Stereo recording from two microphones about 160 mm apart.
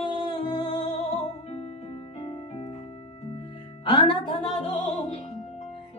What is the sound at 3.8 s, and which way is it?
Music, 30° left (ahead or behind).